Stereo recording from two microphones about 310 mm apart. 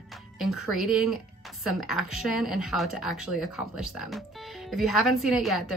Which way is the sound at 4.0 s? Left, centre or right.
Centre.